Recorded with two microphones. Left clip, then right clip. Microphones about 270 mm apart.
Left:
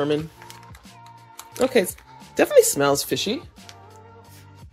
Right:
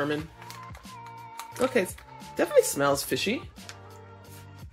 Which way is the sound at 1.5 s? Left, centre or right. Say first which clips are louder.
Left 6 dB; left.